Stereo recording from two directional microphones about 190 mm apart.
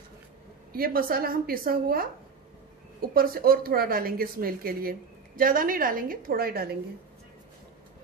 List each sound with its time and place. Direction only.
0.7 s a woman's voice: 50° right (ahead or behind)
3.2 s a woman's voice: 50° right (ahead or behind)